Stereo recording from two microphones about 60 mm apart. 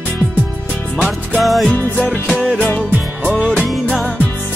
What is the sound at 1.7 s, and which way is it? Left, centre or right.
Music, left.